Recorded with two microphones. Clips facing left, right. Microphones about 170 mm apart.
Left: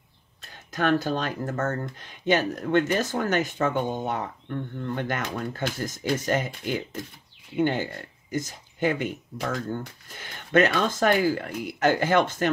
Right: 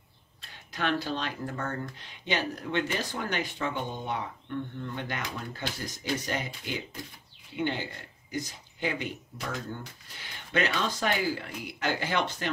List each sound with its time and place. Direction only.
0.4 s speech: 45° left (ahead or behind)